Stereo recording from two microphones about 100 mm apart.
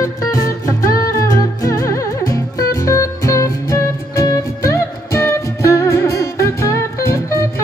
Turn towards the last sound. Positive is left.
turn(degrees=25)  # may be behind; listen again after turning